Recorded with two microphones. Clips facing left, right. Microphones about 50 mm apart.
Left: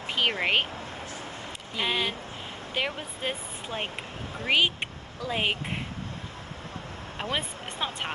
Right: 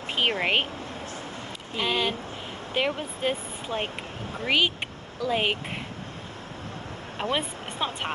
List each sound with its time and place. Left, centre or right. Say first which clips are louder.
0.3 s speech: right 1 dB; centre
1.8 s speech: right 2 dB; centre
2.7 s speech: right 4 dB; centre
7.2 s speech: right 3 dB; centre